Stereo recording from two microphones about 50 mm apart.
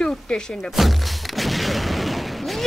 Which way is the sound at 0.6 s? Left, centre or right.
Centre.